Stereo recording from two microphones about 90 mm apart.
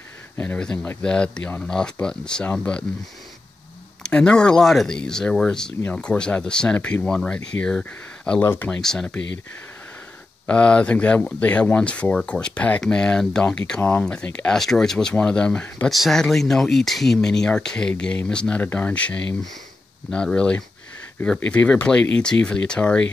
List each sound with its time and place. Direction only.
0.4 s speech: 15° left (ahead or behind)
4.0 s speech: 10° left (ahead or behind)
8.4 s speech: 20° left (ahead or behind)
8.8 s speech: 5° left (ahead or behind)
10.4 s speech: 10° left (ahead or behind)
15.9 s speech: centre (ahead or behind)